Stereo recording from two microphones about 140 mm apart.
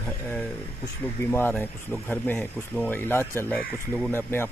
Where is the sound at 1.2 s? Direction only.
15° left (ahead or behind).